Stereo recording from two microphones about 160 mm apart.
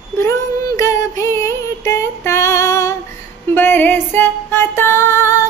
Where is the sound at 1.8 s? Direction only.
15° left (ahead or behind).